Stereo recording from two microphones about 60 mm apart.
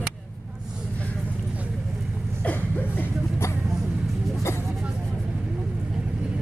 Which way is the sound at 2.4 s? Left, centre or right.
Left.